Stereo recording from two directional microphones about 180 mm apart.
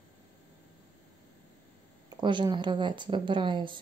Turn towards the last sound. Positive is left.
turn(degrees=-25)  # may be behind; listen again after turning